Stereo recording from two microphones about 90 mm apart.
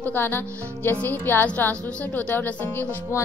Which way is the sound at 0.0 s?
25° left (ahead or behind).